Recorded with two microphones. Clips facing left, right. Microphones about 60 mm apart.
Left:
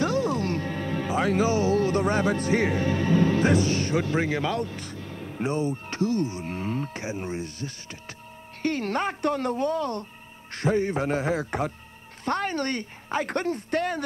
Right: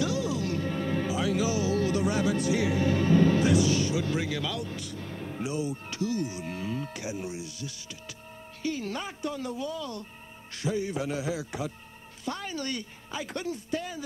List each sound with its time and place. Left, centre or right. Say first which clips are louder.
0.0 s music: left 4 dB; left
3.4 s speech: left 1 dB; left